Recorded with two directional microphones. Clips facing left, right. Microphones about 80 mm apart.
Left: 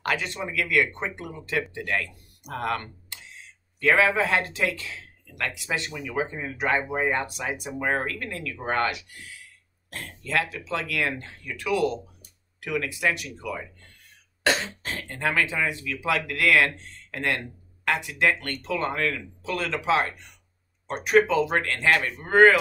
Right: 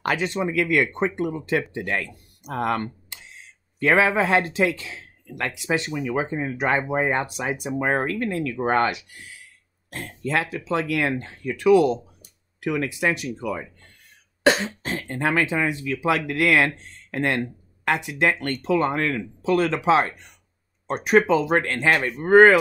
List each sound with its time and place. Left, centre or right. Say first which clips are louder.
0.0 s speech: right 5 dB; right
3.9 s speech: right 3 dB; centre